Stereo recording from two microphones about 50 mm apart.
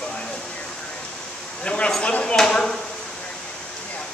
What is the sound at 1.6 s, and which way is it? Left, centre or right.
Speech, left.